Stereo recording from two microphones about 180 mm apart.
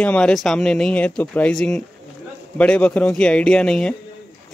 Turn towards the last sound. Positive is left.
turn(degrees=5)  # may be behind; listen again after turning